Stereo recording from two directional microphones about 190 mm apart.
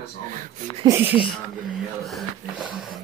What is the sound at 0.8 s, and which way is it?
Speech, 10° right (ahead or behind).